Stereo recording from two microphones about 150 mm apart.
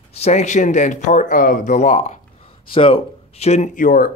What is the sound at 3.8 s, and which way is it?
Speech, 70° left (ahead or behind).